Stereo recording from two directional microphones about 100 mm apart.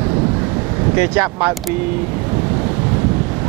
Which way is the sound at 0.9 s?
20° right (ahead or behind).